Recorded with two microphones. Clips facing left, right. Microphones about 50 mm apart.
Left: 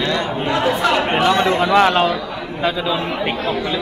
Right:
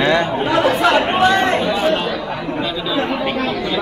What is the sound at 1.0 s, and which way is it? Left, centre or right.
Speech, left.